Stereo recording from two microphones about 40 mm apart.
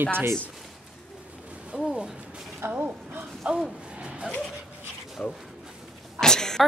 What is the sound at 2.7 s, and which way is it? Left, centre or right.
Speech, right.